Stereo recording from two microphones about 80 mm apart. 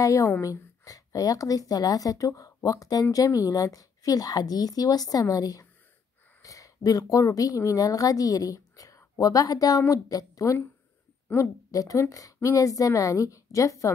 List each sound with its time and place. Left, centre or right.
0.0 s a woman's voice: left